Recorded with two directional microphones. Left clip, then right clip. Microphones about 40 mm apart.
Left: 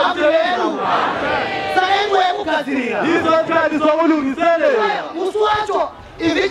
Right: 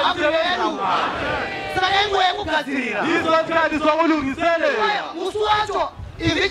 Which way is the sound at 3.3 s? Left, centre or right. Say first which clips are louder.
Left 3 dB; right.